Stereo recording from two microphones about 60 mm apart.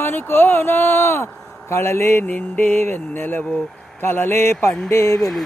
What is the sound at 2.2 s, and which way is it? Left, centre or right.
Mantra, left.